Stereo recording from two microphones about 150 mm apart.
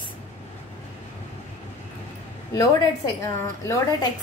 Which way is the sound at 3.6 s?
20° left (ahead or behind).